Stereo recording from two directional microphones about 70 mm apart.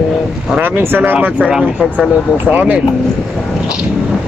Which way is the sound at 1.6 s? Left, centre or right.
Centre.